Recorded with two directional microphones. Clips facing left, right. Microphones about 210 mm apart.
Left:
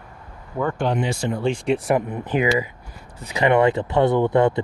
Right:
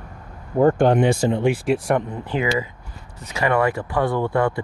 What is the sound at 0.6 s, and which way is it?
Speech, 50° right (ahead or behind).